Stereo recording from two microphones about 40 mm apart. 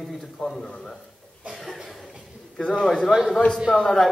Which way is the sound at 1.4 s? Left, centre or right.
Right.